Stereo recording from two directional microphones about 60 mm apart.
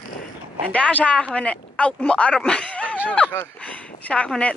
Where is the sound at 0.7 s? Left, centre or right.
Left.